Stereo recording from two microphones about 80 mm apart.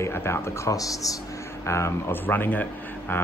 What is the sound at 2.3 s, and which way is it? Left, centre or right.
Speech, left.